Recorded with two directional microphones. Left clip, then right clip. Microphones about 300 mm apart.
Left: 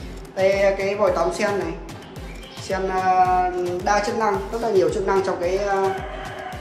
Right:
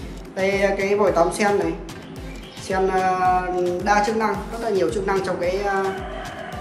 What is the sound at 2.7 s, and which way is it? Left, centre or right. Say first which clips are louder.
A woman's voice: even; centre.